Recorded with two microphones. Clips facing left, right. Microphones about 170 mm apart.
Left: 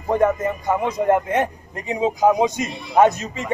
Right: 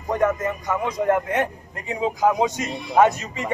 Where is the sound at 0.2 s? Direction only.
25° left (ahead or behind).